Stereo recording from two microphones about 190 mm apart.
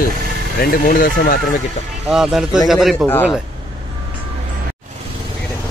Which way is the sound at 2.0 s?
Centre (ahead or behind).